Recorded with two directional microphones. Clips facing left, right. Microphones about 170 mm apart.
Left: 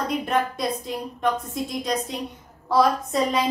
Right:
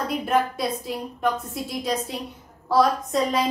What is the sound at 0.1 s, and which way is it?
A woman's voice, 5° right (ahead or behind).